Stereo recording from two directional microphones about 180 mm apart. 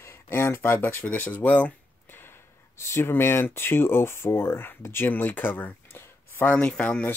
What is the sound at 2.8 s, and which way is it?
Speech, 15° left (ahead or behind).